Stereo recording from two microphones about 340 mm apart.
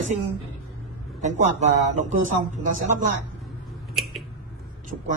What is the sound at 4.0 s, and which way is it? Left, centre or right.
Scissors, centre.